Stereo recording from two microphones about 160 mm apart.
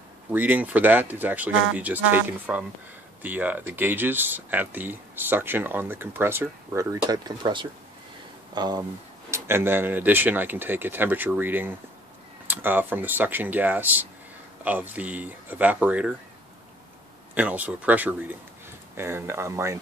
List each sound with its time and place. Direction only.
0.3 s speech: 10° right (ahead or behind)
9.3 s speech: 15° right (ahead or behind)
17.3 s speech: 10° right (ahead or behind)